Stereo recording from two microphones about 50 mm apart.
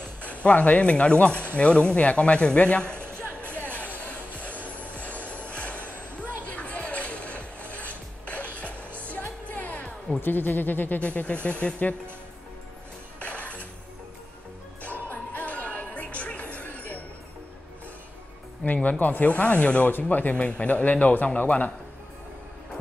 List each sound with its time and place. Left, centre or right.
0.2 s speech: left
3.2 s music: left
4.9 s vehicle: left
5.5 s a sound: left
9.1 s music: left
10.2 s speech: left
11.1 s speech: left
13.2 s music: left
14.8 s music: left
18.7 s speech: left
19.9 s speech: left